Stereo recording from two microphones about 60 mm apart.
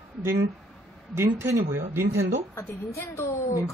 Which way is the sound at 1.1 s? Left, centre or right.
Right.